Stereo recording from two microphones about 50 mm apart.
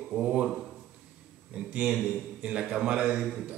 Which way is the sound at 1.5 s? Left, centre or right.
Right.